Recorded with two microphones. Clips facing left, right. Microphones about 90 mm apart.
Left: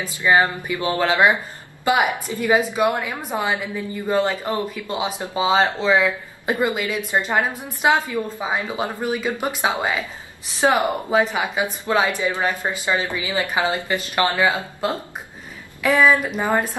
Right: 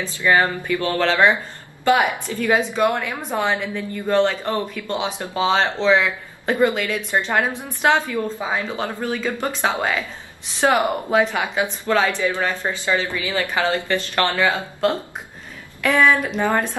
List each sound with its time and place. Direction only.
0.0 s a woman's voice: 15° left (ahead or behind)